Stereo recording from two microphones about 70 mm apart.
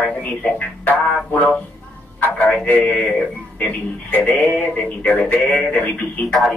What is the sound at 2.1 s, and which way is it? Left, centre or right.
Telephone, left.